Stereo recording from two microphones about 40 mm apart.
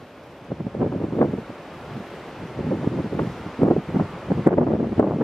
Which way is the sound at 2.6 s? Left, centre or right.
Centre.